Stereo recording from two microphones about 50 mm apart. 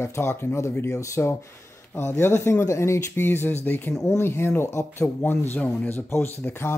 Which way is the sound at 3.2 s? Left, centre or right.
Left.